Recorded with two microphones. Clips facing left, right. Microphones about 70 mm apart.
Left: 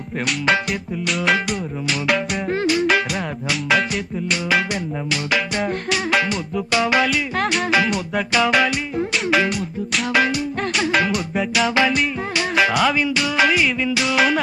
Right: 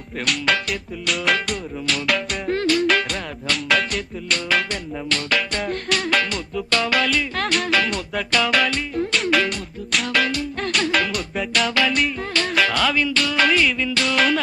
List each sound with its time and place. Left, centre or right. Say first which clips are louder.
0.3 s music: left 2 dB; centre